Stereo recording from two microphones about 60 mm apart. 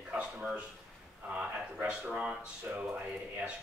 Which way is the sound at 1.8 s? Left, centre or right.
Centre.